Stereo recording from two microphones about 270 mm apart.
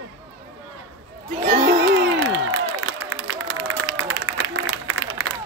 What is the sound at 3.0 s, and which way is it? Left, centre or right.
Applause, right.